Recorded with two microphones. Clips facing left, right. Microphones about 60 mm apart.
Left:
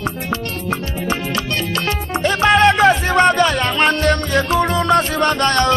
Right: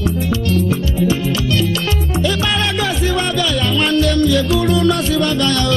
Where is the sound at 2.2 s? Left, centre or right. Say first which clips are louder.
Left 8 dB; left.